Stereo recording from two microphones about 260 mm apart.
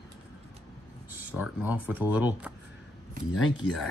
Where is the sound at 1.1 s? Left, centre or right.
Centre.